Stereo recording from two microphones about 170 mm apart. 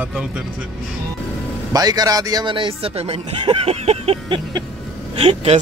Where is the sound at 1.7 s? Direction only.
20° right (ahead or behind).